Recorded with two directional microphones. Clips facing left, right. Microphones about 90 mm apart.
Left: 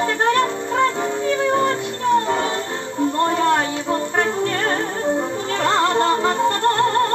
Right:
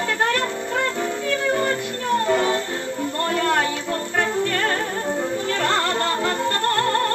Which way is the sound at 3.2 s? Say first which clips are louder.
Left 2 dB; 25° left (ahead or behind).